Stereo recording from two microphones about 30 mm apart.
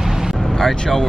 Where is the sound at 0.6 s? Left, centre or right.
Centre.